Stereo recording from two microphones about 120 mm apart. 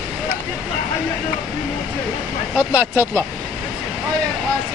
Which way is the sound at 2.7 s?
15° right (ahead or behind).